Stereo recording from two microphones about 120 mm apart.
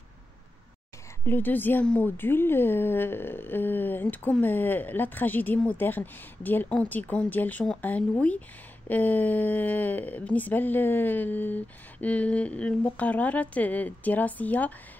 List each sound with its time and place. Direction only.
1.2 s a woman's voice: 15° left (ahead or behind)